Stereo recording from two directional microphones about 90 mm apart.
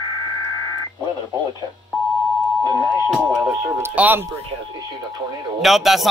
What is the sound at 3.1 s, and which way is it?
Speech, 10° right (ahead or behind).